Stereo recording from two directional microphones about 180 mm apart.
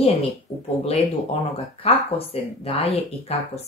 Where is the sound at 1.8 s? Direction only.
35° left (ahead or behind).